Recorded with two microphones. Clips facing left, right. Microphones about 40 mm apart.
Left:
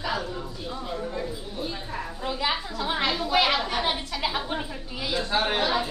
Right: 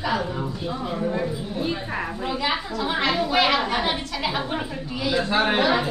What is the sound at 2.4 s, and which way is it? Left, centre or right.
A woman's voice, centre.